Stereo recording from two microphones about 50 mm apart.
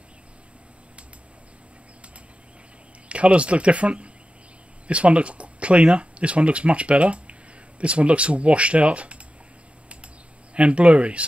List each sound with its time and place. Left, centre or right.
3.1 s speech: right
10.5 s speech: right